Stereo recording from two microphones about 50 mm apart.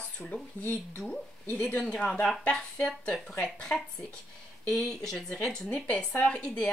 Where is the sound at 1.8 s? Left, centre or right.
Centre.